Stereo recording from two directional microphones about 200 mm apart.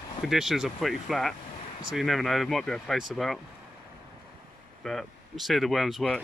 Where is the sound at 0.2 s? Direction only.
Centre (ahead or behind).